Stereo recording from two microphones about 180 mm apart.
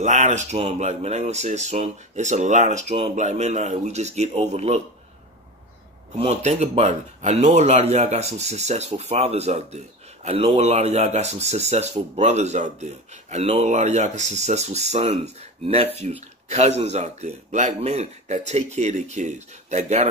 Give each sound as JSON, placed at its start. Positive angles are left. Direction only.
{"t": 0.0, "sound": "speech", "side_deg": -40}
{"t": 6.1, "sound": "speech", "side_deg": -35}